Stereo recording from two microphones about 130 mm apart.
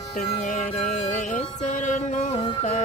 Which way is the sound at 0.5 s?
65° left (ahead or behind).